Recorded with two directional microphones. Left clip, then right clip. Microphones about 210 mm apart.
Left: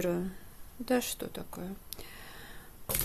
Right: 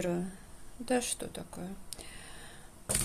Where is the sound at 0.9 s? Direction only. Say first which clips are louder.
Left 1 dB; 10° left (ahead or behind).